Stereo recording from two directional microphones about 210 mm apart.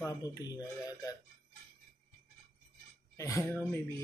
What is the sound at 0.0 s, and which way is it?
Speech, 15° left (ahead or behind).